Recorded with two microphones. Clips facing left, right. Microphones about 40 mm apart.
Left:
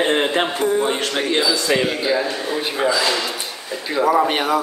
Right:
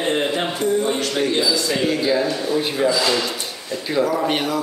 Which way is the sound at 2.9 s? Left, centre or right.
Centre.